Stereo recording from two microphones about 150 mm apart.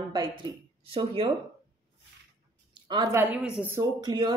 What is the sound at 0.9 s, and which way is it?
Speech, 35° right (ahead or behind).